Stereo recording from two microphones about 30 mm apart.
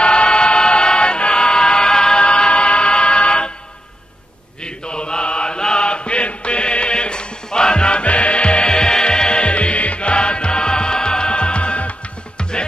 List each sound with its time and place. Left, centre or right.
0.0 s choir: left
4.6 s mantra: left
8.0 s music: left
8.7 s music: left
9.4 s music: left
12.4 s music: left